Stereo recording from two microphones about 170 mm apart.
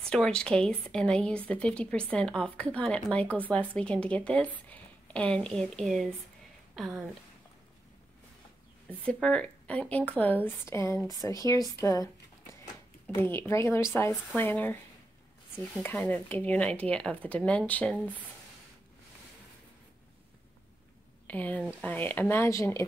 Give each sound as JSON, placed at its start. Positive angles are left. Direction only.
{"t": 0.1, "sound": "a woman's voice", "side_deg": 5}
{"t": 9.0, "sound": "a woman's voice", "side_deg": 5}
{"t": 13.1, "sound": "a woman's voice", "side_deg": 15}
{"t": 15.8, "sound": "a woman's voice", "side_deg": 10}
{"t": 21.3, "sound": "a woman's voice", "side_deg": 10}